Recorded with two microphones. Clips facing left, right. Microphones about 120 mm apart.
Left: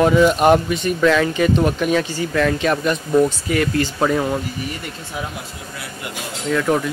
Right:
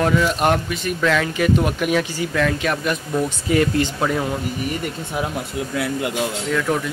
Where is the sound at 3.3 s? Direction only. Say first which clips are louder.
Right 1 dB; 25° right (ahead or behind).